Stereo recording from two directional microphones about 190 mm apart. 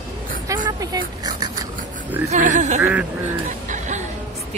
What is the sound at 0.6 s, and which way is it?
Speech, 20° right (ahead or behind).